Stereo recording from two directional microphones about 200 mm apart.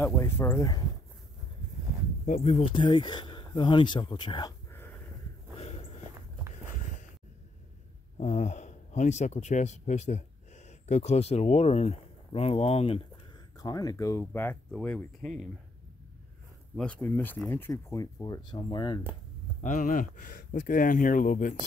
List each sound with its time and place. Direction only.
0.0 s speech: 10° left (ahead or behind)
2.2 s speech: 35° left (ahead or behind); by 4.8 s 15° left (ahead or behind)
8.2 s speech: 35° left (ahead or behind)
13.6 s speech: 20° left (ahead or behind)
16.7 s speech: 5° left (ahead or behind); by 18.9 s 25° left (ahead or behind)
19.6 s speech: 40° left (ahead or behind)